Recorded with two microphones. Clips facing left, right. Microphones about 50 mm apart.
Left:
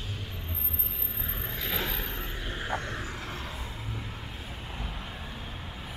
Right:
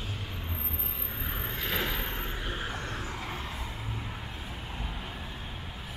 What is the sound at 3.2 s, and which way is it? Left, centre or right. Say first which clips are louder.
Music: right 1 dB; centre.